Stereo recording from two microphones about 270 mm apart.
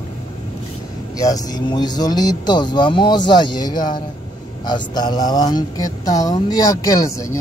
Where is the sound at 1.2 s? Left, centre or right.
Centre.